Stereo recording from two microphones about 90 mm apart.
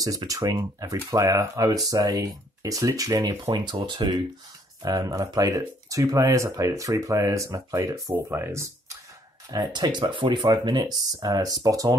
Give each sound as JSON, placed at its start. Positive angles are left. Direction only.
{"t": 0.3, "sound": "speech", "side_deg": -40}
{"t": 4.8, "sound": "speech", "side_deg": -40}
{"t": 9.5, "sound": "speech", "side_deg": -50}